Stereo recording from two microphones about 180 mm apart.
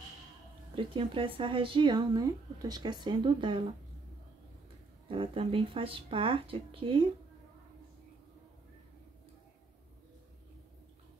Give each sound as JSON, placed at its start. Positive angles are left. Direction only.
{"t": 0.7, "sound": "speech", "side_deg": -30}
{"t": 5.0, "sound": "speech", "side_deg": -30}